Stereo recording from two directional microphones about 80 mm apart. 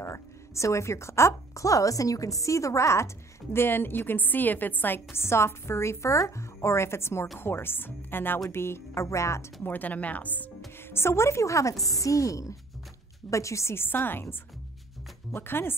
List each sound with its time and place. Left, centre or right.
0.0 s a woman's voice: left
3.5 s a woman's voice: left
9.6 s speech: left
10.9 s a woman's voice: left
15.3 s speech: left